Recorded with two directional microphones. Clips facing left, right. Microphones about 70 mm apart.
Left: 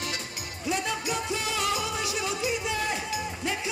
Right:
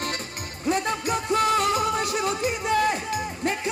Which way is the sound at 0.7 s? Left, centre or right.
Right.